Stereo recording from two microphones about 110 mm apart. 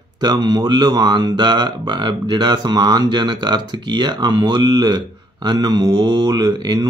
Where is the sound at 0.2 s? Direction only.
40° right (ahead or behind).